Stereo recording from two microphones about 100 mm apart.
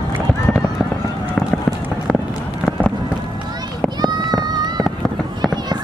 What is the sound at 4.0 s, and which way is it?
Run, 45° right (ahead or behind).